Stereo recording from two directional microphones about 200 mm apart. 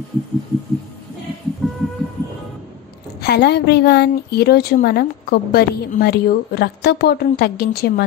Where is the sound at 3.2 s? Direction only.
55° left (ahead or behind).